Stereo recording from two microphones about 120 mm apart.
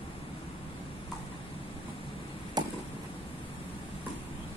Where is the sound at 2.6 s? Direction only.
35° right (ahead or behind).